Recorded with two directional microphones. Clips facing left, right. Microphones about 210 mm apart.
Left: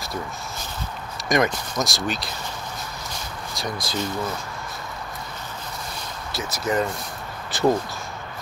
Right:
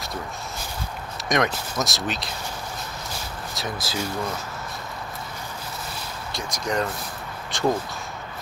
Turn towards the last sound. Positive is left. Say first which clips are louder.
# left 3 dB
turn(degrees=5)  # may be behind; listen again after turning